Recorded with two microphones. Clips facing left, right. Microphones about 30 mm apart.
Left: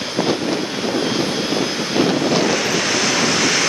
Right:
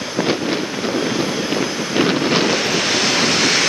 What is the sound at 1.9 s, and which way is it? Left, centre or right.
Waves, centre.